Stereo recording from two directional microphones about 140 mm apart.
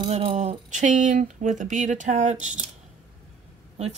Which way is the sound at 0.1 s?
55° right (ahead or behind).